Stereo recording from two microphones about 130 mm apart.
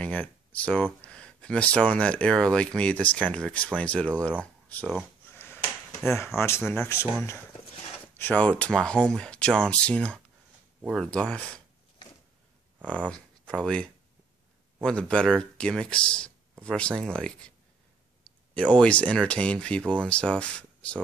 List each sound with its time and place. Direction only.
0.0 s speech: 10° left (ahead or behind)
5.3 s a sound: 15° left (ahead or behind)
6.0 s speech: 20° left (ahead or behind)
8.2 s speech: 10° left (ahead or behind)
13.1 s speech: 5° left (ahead or behind)